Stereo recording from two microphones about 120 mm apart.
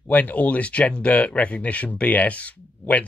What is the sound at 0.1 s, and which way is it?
Speech, 10° left (ahead or behind).